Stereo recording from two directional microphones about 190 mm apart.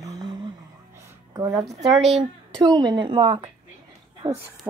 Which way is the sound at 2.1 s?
20° right (ahead or behind).